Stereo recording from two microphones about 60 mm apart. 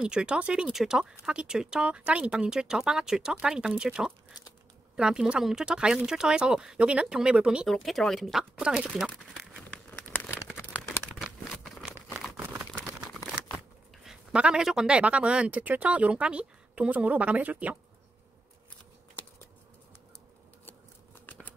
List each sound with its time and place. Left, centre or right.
0.0 s speech: centre
0.7 s speech: centre
7.6 s speech: centre
10.8 s crumpling: centre
12.4 s a sound: right
12.7 s a sound: centre
14.3 s speech: centre